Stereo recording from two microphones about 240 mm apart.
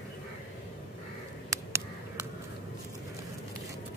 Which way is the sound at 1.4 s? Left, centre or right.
Centre.